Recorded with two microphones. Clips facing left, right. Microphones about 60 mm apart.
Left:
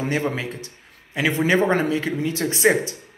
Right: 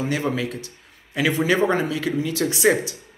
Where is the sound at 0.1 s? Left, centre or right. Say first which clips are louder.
Even; left.